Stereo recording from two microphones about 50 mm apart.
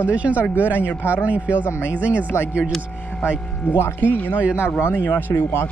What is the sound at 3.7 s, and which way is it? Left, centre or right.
Speech, left.